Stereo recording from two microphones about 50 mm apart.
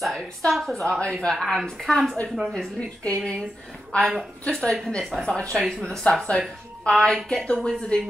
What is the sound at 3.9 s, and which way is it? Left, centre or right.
A woman's voice, left.